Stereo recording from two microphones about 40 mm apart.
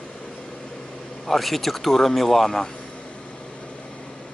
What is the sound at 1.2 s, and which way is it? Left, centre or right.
Speech, centre.